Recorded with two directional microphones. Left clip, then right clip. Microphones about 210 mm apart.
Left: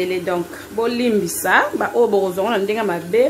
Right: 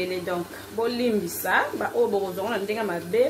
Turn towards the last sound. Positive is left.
turn(degrees=25)  # may be behind; listen again after turning